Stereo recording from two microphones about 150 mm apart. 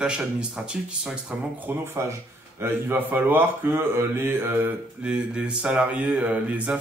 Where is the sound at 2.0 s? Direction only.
20° right (ahead or behind).